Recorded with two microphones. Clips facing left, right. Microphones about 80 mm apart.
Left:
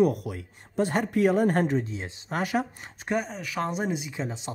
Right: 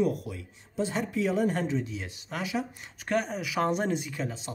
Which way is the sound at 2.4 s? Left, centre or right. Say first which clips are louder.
Left 5 dB; left.